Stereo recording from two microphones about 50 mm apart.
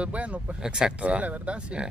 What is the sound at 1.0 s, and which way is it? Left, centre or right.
Speech, right.